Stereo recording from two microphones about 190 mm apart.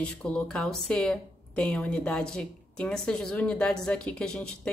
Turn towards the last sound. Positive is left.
turn(degrees=5)  # may be behind; listen again after turning